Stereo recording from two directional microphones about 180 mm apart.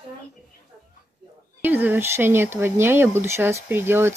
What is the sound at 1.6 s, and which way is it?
Speech, 10° right (ahead or behind).